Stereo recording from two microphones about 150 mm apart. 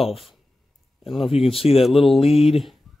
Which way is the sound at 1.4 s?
40° left (ahead or behind).